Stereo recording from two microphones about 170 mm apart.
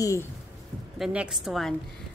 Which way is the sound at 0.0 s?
20° left (ahead or behind).